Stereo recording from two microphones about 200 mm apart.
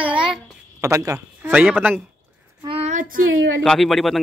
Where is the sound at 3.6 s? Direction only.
Centre (ahead or behind).